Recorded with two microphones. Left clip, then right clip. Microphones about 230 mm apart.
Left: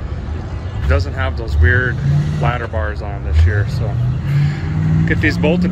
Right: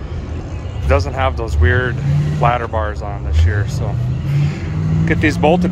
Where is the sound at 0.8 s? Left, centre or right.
Centre.